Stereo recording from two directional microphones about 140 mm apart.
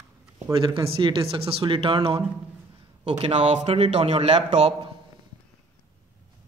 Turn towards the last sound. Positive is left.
turn(degrees=-55)  # may be behind; listen again after turning